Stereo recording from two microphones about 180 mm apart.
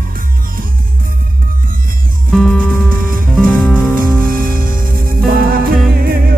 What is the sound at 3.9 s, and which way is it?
Music, 50° right (ahead or behind).